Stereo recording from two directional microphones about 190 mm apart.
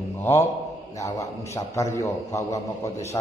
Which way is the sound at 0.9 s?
15° left (ahead or behind).